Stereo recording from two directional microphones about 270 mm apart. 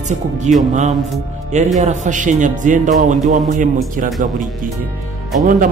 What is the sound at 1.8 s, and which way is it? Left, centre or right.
Speech, right.